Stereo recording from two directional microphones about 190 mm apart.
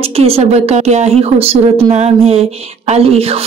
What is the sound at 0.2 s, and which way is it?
Speech, 35° right (ahead or behind).